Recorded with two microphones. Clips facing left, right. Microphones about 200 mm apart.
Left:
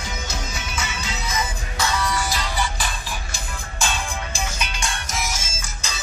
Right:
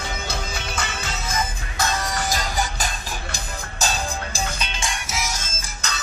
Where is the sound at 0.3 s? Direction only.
60° right (ahead or behind); by 4.4 s 35° right (ahead or behind).